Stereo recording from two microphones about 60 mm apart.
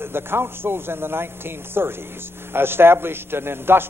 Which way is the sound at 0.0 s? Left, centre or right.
Right.